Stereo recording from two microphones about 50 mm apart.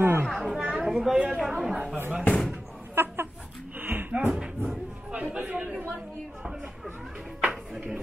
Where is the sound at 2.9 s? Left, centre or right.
Right.